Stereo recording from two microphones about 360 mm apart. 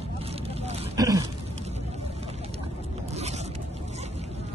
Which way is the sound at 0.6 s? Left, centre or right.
Centre.